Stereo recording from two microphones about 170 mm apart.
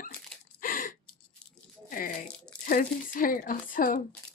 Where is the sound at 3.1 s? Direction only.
55° left (ahead or behind).